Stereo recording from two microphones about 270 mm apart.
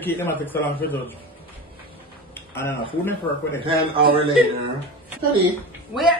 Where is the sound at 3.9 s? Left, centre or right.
Centre.